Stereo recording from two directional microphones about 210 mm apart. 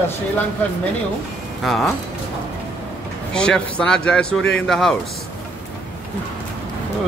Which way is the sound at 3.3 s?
5° left (ahead or behind).